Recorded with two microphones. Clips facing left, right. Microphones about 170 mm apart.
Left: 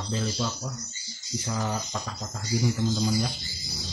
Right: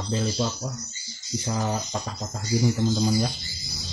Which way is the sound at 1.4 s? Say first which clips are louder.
Right 3 dB; 30° right (ahead or behind).